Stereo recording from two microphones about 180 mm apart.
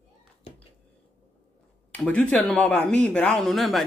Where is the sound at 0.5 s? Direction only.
30° left (ahead or behind).